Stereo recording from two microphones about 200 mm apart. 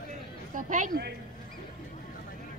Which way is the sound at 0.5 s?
40° right (ahead or behind).